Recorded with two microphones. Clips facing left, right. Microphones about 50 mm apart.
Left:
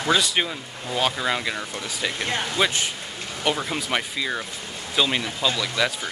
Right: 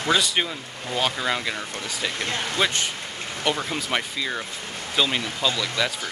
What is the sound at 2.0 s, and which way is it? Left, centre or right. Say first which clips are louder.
Speech: left 2 dB; left.